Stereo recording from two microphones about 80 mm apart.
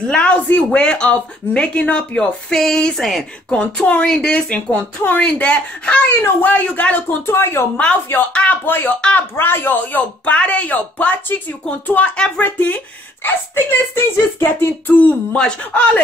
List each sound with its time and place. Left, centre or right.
0.0 s speech: centre; by 7.6 s left
7.7 s speech: centre